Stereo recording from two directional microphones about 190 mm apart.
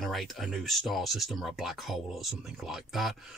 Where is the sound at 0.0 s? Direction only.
Centre (ahead or behind).